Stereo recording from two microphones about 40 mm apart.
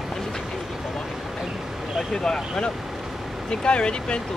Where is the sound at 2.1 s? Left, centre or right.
Centre.